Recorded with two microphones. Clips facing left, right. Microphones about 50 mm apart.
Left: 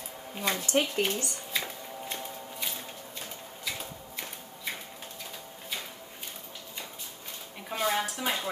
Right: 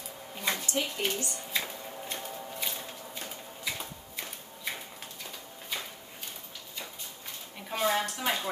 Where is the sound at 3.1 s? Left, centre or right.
Centre.